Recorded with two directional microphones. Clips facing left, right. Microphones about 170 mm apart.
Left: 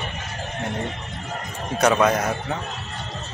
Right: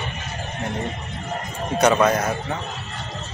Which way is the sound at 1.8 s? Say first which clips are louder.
Right 1 dB; centre (ahead or behind).